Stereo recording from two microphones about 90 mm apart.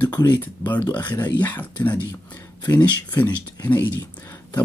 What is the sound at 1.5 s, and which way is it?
Speech, 20° left (ahead or behind).